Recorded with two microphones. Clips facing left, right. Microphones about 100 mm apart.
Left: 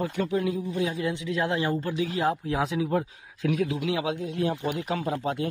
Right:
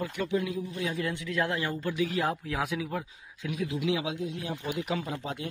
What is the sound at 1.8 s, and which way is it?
A man's voice, 35° left (ahead or behind).